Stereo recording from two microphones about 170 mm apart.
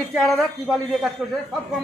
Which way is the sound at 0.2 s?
Centre (ahead or behind).